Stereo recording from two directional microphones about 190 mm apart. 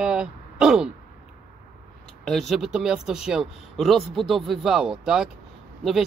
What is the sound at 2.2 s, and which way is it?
Speech, centre (ahead or behind).